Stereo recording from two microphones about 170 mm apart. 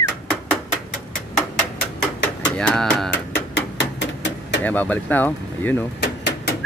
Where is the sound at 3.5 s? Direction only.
90° left.